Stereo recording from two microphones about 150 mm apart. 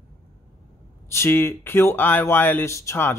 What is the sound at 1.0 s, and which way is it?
Speech, 15° left (ahead or behind).